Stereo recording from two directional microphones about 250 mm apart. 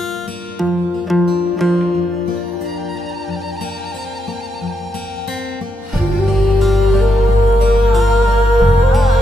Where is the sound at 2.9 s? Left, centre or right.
Centre.